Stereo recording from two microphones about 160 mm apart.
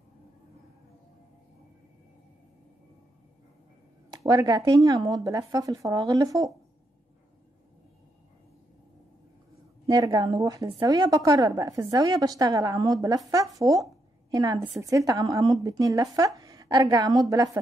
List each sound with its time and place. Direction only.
4.1 s a woman's voice: 20° right (ahead or behind)
9.8 s a woman's voice: 25° right (ahead or behind)